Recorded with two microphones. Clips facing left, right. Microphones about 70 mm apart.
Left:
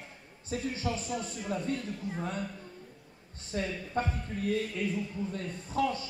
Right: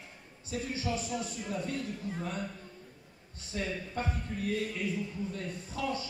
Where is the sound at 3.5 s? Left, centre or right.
Left.